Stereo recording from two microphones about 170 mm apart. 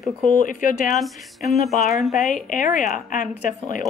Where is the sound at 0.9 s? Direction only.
Centre (ahead or behind).